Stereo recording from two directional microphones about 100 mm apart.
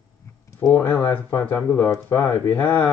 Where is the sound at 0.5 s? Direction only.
30° left (ahead or behind).